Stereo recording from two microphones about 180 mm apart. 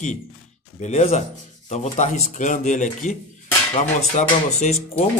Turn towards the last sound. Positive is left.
turn(degrees=35)  # may be behind; listen again after turning